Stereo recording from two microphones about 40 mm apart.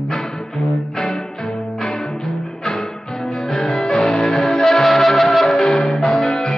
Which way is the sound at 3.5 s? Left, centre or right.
Centre.